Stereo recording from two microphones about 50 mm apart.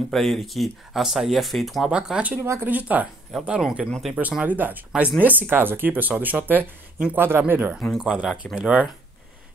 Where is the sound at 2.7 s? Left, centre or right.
Right.